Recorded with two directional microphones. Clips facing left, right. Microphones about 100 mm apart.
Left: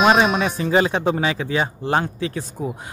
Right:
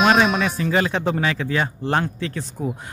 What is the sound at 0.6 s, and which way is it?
A man's voice, 20° left (ahead or behind).